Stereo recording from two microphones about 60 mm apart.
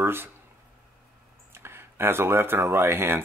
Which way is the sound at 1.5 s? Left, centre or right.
Right.